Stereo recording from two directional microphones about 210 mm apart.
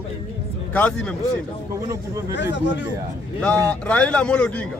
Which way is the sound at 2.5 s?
55° left (ahead or behind).